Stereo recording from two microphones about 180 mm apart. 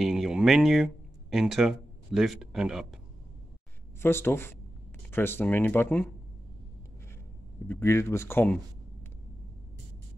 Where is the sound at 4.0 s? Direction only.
15° left (ahead or behind).